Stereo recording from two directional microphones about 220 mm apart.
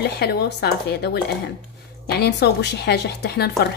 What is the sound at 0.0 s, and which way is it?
A woman's voice, 50° left (ahead or behind).